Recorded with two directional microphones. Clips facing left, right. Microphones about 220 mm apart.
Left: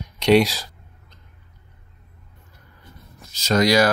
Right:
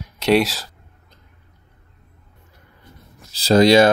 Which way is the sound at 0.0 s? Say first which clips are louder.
Left 1 dB; 5° right (ahead or behind).